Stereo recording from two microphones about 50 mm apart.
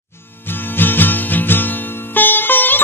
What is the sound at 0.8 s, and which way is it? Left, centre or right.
Music, left.